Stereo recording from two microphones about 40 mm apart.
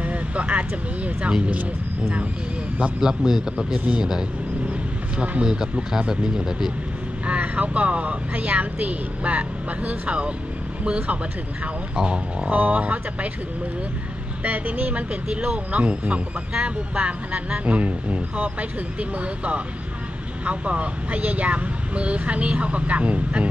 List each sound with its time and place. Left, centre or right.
0.0 s speech: right
3.0 s speech: centre
3.7 s speech: right
4.6 s a sound: right
5.9 s speech: centre
7.2 s speech: right
12.4 s speech: right
14.4 s speech: right
15.2 s speech: right